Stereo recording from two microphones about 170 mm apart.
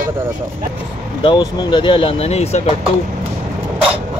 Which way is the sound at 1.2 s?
25° left (ahead or behind).